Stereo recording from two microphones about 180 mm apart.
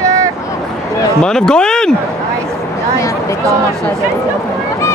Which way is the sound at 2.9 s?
20° left (ahead or behind).